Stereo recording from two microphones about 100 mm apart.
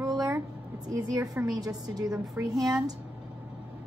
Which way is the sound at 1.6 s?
40° right (ahead or behind).